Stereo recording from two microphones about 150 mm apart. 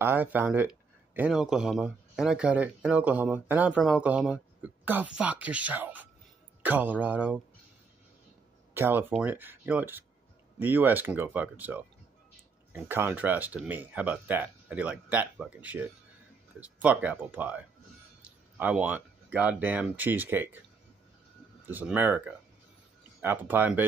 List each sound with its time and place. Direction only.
0.0 s speech: 15° right (ahead or behind)
8.7 s speech: 15° right (ahead or behind)
21.6 s speech: 10° right (ahead or behind)